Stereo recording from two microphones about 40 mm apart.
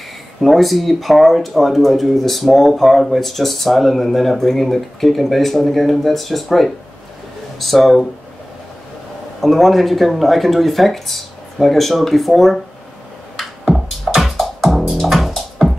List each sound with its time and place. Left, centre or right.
0.4 s speech: centre
9.4 s speech: centre
13.4 s music: centre
13.7 s music: centre